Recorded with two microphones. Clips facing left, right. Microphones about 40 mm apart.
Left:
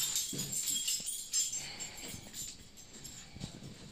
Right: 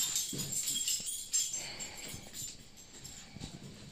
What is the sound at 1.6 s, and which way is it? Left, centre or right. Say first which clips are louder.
Music: right 1 dB; centre.